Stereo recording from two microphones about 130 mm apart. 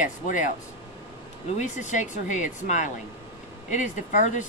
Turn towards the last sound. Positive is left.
turn(degrees=75)  # may be behind; listen again after turning